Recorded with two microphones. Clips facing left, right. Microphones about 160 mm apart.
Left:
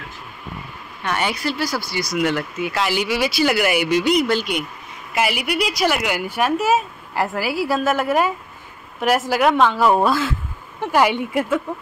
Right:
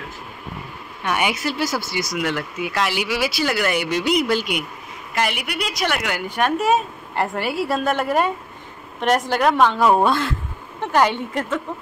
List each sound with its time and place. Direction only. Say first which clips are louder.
1.0 s speech: even; 10° right (ahead or behind)
2.1 s a woman's voice: left 5 dB; centre (ahead or behind)
3.4 s speech: left 5 dB; 10° left (ahead or behind)
4.0 s speech: left 1 dB; 5° right (ahead or behind)
5.1 s a woman's voice: left 3 dB; 5° left (ahead or behind)